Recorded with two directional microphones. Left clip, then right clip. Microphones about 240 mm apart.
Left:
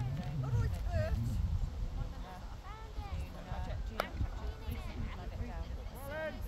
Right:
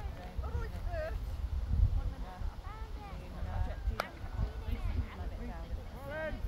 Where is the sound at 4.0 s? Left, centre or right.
Centre.